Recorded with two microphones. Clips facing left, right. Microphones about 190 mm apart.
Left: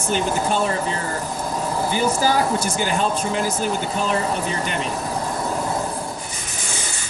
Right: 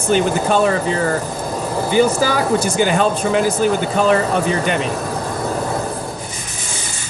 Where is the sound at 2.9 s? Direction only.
75° right (ahead or behind).